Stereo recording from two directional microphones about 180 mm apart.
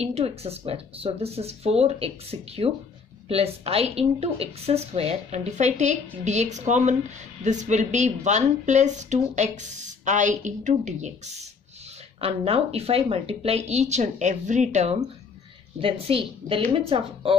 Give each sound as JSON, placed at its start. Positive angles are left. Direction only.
{"t": 0.0, "sound": "a woman's voice", "side_deg": -35}